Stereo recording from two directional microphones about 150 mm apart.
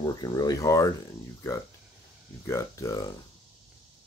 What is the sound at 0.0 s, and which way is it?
Speech, 25° left (ahead or behind).